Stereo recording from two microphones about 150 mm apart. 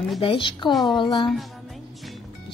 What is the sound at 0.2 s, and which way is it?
Speech, 35° left (ahead or behind).